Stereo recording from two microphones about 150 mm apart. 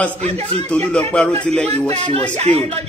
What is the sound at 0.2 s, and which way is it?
Speech, 45° right (ahead or behind).